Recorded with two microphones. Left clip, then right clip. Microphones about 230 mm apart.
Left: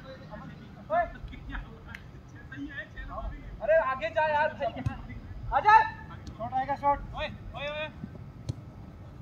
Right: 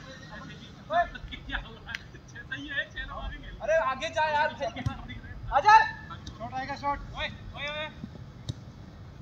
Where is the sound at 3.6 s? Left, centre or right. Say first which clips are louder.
Left 1 dB; right.